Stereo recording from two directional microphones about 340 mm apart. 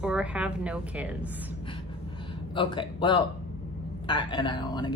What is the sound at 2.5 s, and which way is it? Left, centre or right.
Speech, centre.